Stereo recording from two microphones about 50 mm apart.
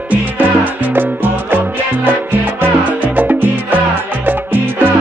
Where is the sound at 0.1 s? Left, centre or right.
Right.